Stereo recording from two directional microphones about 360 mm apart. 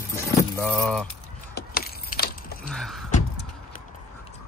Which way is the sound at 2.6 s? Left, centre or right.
Centre.